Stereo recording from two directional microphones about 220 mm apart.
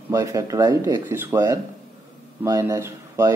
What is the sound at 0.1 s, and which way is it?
Speech, 15° right (ahead or behind).